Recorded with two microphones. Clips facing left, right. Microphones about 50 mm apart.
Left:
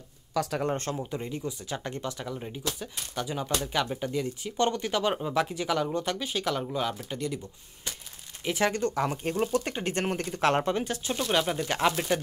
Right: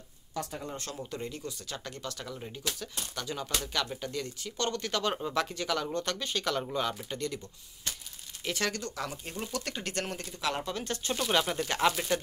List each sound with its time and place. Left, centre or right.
1.1 s speech: centre
8.5 s speech: centre; by 9.5 s left
9.5 s speech: left
10.1 s speech: left
10.8 s speech: centre